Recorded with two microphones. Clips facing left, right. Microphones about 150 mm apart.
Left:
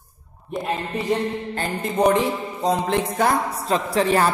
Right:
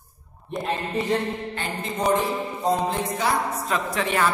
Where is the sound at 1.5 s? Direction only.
40° left (ahead or behind).